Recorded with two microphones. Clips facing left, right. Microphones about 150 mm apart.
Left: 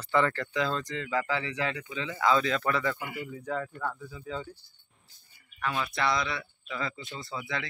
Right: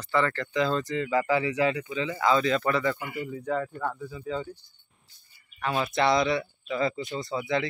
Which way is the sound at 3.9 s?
10° right (ahead or behind).